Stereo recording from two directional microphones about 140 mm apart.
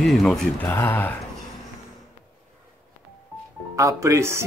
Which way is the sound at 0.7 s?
15° left (ahead or behind).